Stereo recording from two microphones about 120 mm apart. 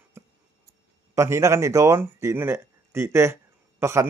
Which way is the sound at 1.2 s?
25° right (ahead or behind).